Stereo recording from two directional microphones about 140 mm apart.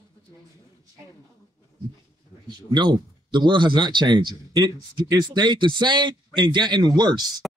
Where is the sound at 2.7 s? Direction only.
30° right (ahead or behind).